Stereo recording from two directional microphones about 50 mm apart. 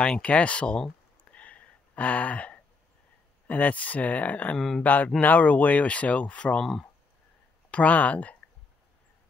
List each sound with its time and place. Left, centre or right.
0.0 s speech: left
1.4 s gasp: left
3.4 s speech: left
4.6 s speech: centre
4.8 s speech: left
6.6 s speech: centre
7.7 s speech: left